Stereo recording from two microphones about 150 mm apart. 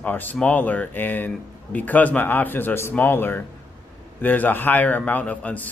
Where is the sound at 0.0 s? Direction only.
10° left (ahead or behind).